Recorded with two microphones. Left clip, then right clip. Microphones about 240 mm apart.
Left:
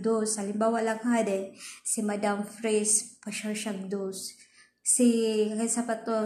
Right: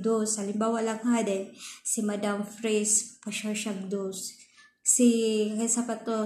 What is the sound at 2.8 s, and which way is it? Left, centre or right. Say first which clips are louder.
Speech: right 1 dB; centre.